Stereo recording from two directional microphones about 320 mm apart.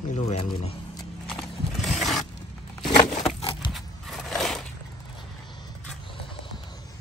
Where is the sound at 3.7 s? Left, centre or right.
Centre.